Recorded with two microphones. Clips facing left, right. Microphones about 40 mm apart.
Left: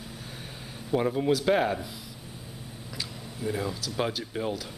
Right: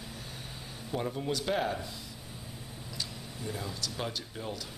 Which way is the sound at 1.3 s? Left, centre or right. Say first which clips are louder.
Left 6 dB; centre.